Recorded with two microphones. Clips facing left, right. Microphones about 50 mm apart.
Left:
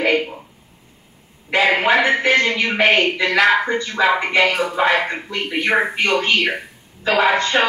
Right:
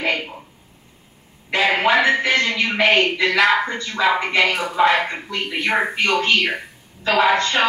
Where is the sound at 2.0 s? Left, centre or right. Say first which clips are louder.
Left 2 dB; left.